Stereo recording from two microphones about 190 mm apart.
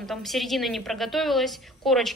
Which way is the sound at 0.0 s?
Centre (ahead or behind).